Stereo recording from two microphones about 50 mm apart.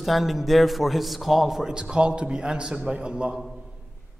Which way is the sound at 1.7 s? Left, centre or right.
Centre.